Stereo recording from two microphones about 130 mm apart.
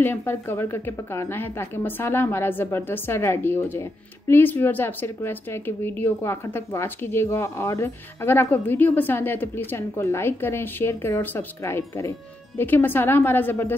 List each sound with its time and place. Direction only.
0.0 s a woman's voice: 15° left (ahead or behind)